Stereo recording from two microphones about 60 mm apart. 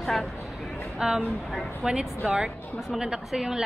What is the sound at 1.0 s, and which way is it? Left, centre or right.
Speech, centre.